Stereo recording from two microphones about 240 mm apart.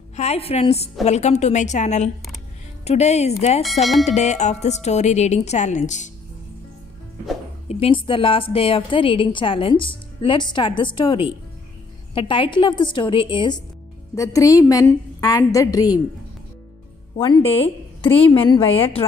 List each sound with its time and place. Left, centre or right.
0.1 s a woman's voice: left
7.6 s a woman's voice: left
17.2 s a woman's voice: left